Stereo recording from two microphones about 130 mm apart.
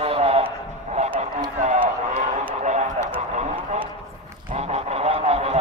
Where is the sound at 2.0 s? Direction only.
65° right (ahead or behind).